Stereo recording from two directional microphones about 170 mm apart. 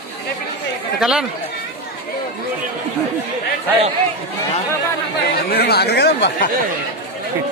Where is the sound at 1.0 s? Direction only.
5° right (ahead or behind).